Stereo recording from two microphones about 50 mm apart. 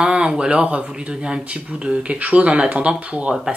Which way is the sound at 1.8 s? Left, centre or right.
Right.